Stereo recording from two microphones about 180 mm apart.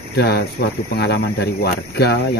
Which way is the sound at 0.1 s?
60° left (ahead or behind).